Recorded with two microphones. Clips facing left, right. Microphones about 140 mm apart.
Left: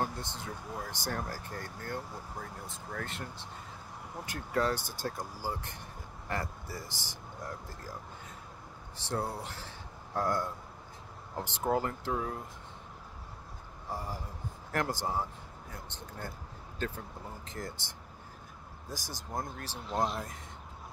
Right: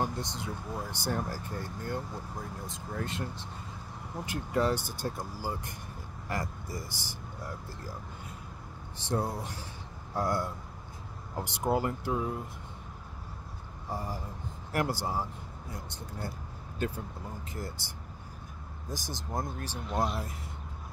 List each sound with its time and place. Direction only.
0.0 s speech: 15° right (ahead or behind)
8.9 s speech: 15° right (ahead or behind)
13.8 s speech: 15° right (ahead or behind)
18.9 s speech: 20° right (ahead or behind)
19.9 s speech: 5° right (ahead or behind)